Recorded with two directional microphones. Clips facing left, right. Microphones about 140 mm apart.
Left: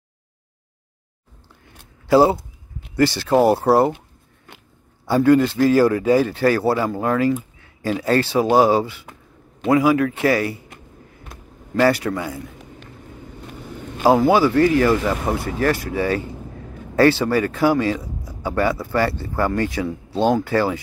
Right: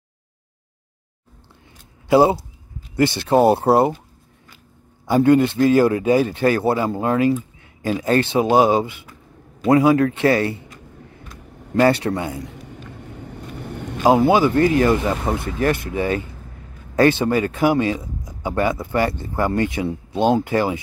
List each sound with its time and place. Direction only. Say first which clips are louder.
2.0 s speech: even; 20° right (ahead or behind)
5.0 s speech: even; 20° right (ahead or behind)
9.6 s speech: right 2 dB; 35° right (ahead or behind)
11.8 s speech: right 1 dB; 30° right (ahead or behind)
13.0 s vehicle: right 2 dB; 70° right (ahead or behind)
14.0 s speech: even; 20° right (ahead or behind)